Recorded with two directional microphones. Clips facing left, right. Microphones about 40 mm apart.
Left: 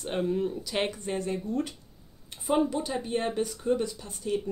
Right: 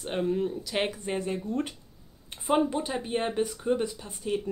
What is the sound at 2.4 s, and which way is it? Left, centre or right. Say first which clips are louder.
Speech: right 1 dB; right.